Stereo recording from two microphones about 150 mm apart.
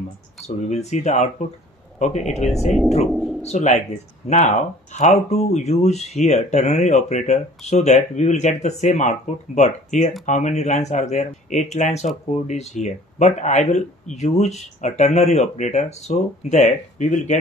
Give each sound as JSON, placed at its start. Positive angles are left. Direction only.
{"t": 0.6, "sound": "speech", "side_deg": 50}
{"t": 3.1, "sound": "speech", "side_deg": 0}
{"t": 3.4, "sound": "speech", "side_deg": 50}